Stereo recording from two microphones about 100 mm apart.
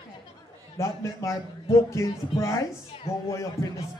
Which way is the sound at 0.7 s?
30° left (ahead or behind).